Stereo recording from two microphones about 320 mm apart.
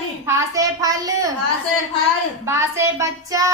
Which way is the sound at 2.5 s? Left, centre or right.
Centre.